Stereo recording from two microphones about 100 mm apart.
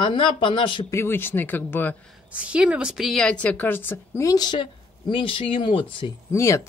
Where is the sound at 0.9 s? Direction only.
25° left (ahead or behind).